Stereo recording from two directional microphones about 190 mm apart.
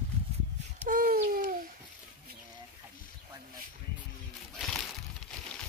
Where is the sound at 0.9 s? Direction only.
50° right (ahead or behind).